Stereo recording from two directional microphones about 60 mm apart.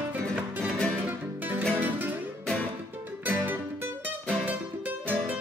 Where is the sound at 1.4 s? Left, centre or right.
Right.